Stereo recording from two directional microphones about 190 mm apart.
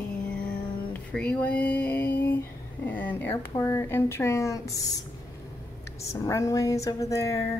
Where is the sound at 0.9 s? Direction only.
5° left (ahead or behind).